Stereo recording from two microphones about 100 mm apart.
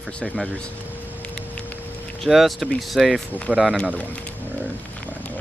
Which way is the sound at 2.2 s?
Centre (ahead or behind).